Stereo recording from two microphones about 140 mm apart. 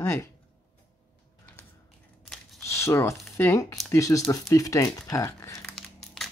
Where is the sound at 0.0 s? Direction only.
20° left (ahead or behind).